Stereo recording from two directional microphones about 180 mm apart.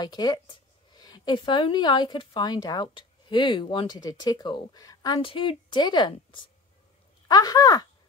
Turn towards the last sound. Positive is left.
turn(degrees=20)  # may be behind; listen again after turning